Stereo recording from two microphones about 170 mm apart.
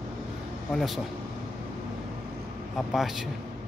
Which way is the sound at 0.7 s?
Centre (ahead or behind).